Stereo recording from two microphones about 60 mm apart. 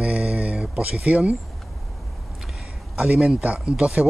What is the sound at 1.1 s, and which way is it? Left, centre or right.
Speech, right.